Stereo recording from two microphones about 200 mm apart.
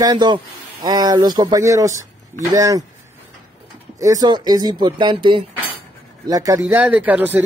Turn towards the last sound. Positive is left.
turn(degrees=-10)  # may be behind; listen again after turning